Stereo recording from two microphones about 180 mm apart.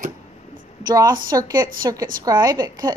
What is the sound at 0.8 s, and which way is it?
A woman's voice, 20° right (ahead or behind).